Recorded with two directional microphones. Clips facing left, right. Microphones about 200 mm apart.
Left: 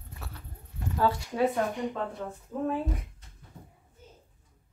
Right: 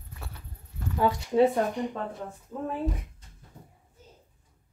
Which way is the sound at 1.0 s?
15° right (ahead or behind).